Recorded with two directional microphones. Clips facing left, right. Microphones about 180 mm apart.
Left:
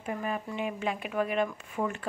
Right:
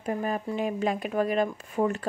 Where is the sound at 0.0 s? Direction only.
40° right (ahead or behind).